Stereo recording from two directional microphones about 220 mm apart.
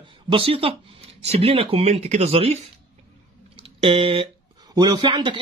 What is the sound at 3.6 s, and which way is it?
Speech, 25° right (ahead or behind).